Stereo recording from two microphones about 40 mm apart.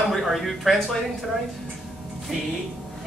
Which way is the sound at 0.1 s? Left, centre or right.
Centre.